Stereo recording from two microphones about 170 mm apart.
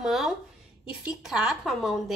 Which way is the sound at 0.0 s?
Centre (ahead or behind).